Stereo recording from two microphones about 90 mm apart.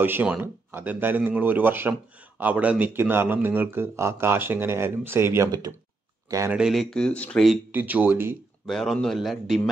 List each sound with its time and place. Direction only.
0.0 s speech: 20° right (ahead or behind)
6.7 s a man's voice: 5° left (ahead or behind)
7.7 s speech: 20° right (ahead or behind)
8.6 s a man's voice: 5° left (ahead or behind)